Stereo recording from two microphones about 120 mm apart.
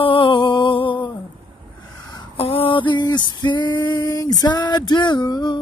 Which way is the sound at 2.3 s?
50° left (ahead or behind).